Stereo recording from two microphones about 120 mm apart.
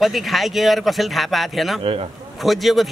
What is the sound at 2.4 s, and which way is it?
Speech, centre (ahead or behind).